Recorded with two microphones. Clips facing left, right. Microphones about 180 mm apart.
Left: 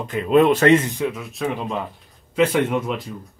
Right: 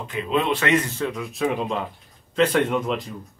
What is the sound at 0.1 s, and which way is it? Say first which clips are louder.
Speech: left 8 dB; 50° left (ahead or behind).